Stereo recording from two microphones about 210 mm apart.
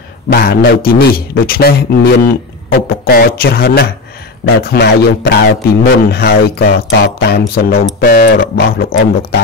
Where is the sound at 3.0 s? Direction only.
45° left (ahead or behind).